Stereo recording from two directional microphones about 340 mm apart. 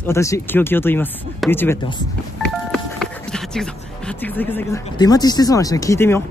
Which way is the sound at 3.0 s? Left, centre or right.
Centre.